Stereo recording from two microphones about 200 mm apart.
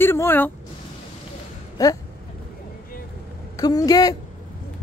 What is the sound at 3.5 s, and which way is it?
Speech, 20° left (ahead or behind).